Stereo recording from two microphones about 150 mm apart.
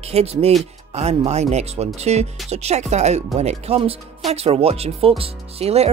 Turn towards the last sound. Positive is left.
turn(degrees=-45)  # may be behind; listen again after turning